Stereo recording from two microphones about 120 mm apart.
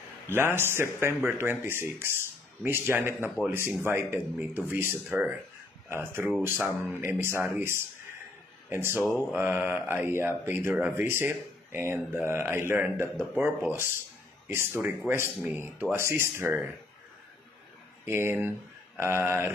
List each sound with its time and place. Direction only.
0.3 s speech: 20° right (ahead or behind)
3.4 s speech: 20° right (ahead or behind)
14.5 s speech: 20° right (ahead or behind)
18.0 s speech: 20° right (ahead or behind)